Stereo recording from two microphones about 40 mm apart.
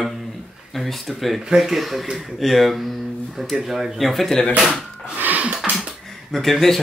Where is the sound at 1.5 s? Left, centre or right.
Centre.